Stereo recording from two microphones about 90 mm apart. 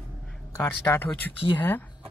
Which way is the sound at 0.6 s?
20° left (ahead or behind).